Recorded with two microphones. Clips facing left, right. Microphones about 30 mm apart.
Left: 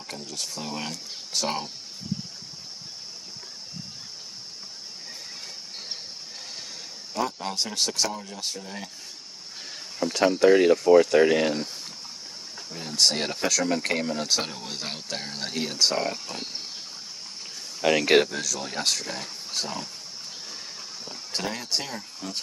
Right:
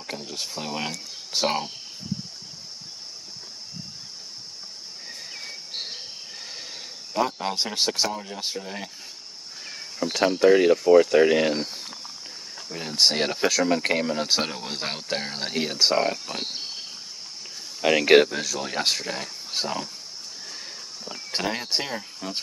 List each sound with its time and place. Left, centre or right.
0.3 s speech: right
5.7 s a sound: right
7.2 s speech: right
10.0 s speech: centre
12.6 s speech: right
16.3 s speech: right
17.8 s speech: centre
21.1 s a sound: right
21.5 s speech: right